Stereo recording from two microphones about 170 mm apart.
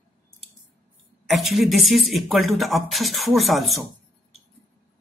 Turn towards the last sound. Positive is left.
turn(degrees=0)  # may be behind; listen again after turning